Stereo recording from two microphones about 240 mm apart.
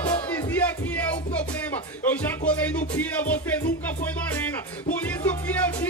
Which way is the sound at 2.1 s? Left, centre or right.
Centre.